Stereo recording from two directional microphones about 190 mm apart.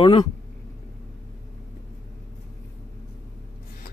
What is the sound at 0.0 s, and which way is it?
Speech, 25° left (ahead or behind).